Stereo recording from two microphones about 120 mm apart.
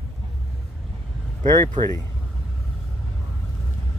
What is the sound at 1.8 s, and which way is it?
Speech, 40° right (ahead or behind).